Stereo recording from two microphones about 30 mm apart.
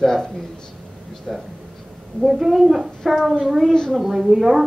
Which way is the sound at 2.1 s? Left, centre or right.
Centre.